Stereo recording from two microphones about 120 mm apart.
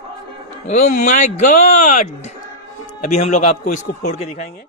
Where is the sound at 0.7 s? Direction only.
85° left.